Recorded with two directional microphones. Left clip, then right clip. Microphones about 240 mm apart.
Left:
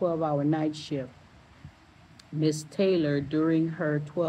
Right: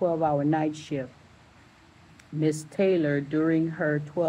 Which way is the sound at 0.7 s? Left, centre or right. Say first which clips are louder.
Right 1 dB; left.